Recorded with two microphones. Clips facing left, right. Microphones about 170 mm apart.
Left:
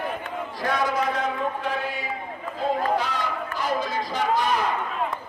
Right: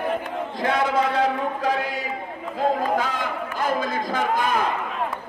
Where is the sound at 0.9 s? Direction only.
30° right (ahead or behind).